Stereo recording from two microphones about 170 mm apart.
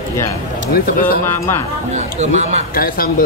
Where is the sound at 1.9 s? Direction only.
40° right (ahead or behind).